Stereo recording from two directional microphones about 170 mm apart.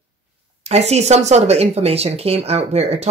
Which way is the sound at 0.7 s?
40° right (ahead or behind).